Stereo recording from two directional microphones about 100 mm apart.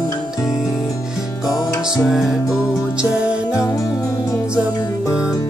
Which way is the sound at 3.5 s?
35° left (ahead or behind).